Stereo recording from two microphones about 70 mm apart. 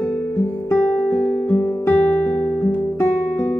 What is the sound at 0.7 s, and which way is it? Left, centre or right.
Guitar, left.